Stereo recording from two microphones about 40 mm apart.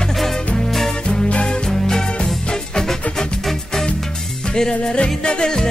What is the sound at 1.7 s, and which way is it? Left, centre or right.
Music, centre.